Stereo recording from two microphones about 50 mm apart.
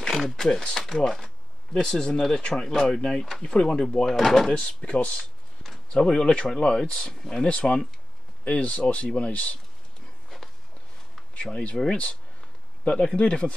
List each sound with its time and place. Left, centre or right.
0.0 s speech: centre
4.6 s speech: left
5.9 s speech: centre
7.4 s speech: left
11.9 s speech: left